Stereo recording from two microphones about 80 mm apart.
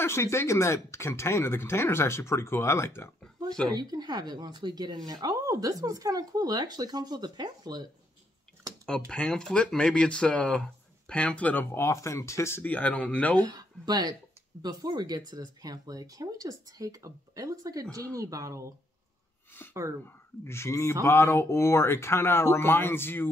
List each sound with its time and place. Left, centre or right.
0.0 s speech: left
3.7 s speech: right
8.8 s speech: centre; by 12.6 s left
12.6 s speech: centre
13.4 s speech: right
19.6 s speech: left